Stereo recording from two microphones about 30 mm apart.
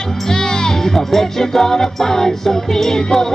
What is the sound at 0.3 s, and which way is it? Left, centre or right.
Music, left.